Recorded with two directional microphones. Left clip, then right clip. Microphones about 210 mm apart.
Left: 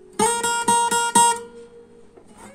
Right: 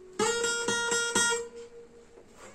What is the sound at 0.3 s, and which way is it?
Music, 30° left (ahead or behind).